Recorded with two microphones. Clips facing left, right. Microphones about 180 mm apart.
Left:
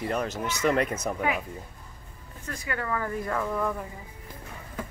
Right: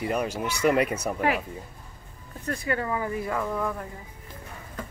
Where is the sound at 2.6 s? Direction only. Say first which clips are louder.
Right 2 dB; 20° right (ahead or behind).